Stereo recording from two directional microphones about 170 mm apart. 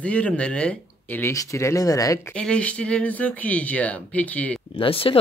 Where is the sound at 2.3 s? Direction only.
5° left (ahead or behind).